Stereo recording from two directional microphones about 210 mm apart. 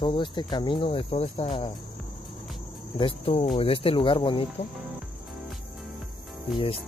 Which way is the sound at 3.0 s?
25° left (ahead or behind).